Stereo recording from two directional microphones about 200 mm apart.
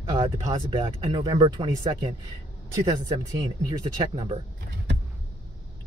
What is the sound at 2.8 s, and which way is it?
Speech, 15° right (ahead or behind).